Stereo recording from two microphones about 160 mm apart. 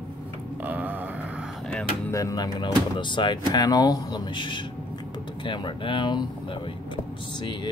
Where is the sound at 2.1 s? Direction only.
20° left (ahead or behind).